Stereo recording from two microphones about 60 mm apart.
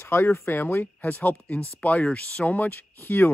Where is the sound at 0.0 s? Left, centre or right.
Left.